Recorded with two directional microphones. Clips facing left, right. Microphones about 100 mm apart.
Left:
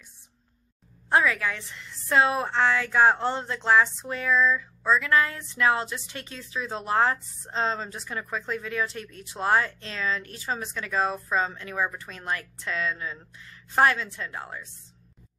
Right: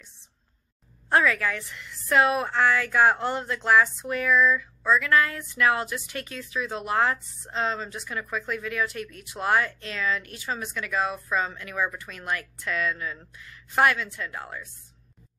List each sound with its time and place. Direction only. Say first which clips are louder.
1.1 s speech: right 1 dB; 20° left (ahead or behind)